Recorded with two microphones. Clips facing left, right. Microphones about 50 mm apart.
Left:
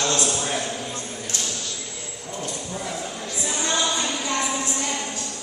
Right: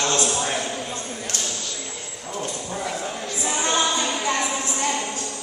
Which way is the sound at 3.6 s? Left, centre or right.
Right.